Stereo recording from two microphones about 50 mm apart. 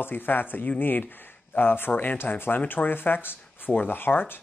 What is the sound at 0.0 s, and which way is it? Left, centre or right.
Speech, left.